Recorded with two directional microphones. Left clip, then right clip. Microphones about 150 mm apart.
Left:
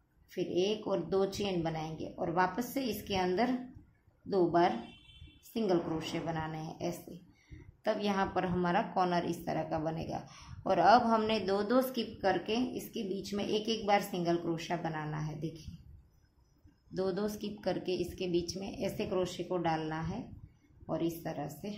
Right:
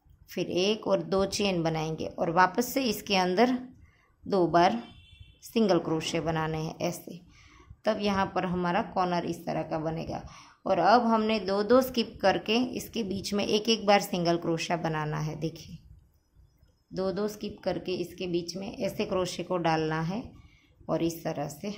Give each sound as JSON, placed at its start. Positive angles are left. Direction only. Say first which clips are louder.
{"t": 0.3, "sound": "a woman's voice", "louder": "right 5 dB", "side_deg": -40}
{"t": 16.9, "sound": "a woman's voice", "louder": "right 4 dB", "side_deg": -25}